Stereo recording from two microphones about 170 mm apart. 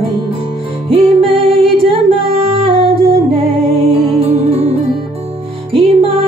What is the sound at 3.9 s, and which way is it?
Music, 30° right (ahead or behind).